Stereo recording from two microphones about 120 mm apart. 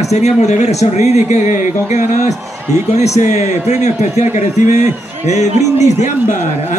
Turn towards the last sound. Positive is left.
turn(degrees=70)  # may be behind; listen again after turning